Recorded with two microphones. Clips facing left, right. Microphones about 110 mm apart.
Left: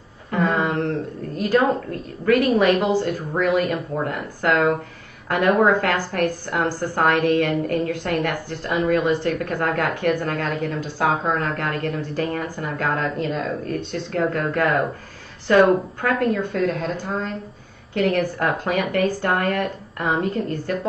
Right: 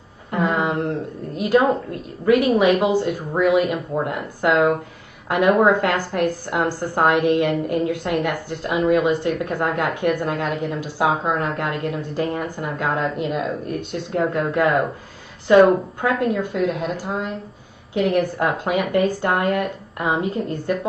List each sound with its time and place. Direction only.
0.3 s a woman's voice: 15° right (ahead or behind)